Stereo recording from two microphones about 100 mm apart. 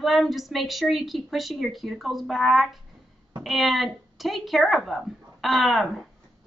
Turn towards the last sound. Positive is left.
turn(degrees=0)  # may be behind; listen again after turning